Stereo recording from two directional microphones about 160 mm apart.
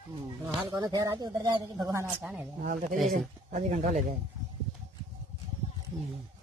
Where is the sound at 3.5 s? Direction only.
50° right (ahead or behind).